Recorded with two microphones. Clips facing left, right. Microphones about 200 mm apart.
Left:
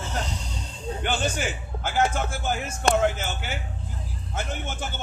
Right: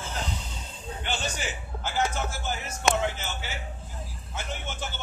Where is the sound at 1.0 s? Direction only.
50° left (ahead or behind).